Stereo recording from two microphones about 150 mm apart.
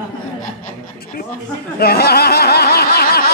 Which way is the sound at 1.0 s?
80° left.